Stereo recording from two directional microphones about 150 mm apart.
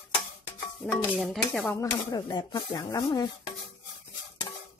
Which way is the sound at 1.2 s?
5° left (ahead or behind).